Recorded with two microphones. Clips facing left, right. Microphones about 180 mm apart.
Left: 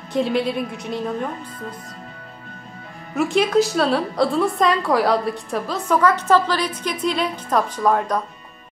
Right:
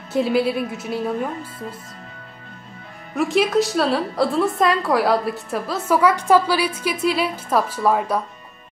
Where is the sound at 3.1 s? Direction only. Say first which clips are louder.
Left 1 dB; centre (ahead or behind).